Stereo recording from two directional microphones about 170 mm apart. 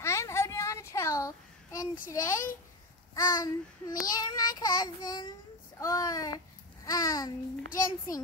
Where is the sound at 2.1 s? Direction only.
20° left (ahead or behind).